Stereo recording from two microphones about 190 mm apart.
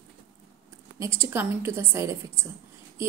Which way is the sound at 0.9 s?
15° right (ahead or behind).